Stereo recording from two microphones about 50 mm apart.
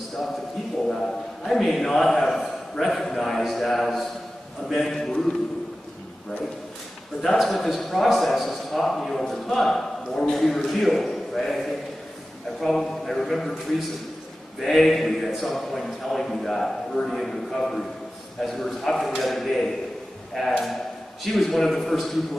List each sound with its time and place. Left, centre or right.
0.8 s a man's voice: centre
1.4 s a man's voice: centre
7.2 s a man's voice: centre